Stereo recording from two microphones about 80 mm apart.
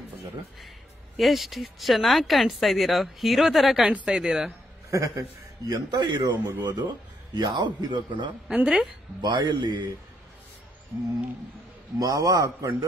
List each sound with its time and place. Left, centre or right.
1.1 s speech: centre
5.7 s a man's voice: right
8.5 s speech: centre
9.2 s a man's voice: right
12.0 s a man's voice: right